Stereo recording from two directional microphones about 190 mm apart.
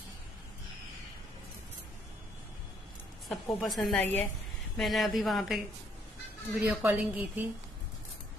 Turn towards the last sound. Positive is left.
turn(degrees=-10)  # may be behind; listen again after turning